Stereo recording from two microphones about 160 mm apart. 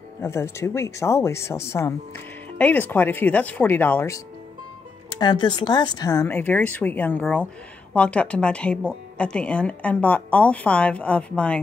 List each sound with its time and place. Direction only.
0.2 s speech: 15° left (ahead or behind)
5.1 s speech: 30° left (ahead or behind); by 11.6 s 10° left (ahead or behind)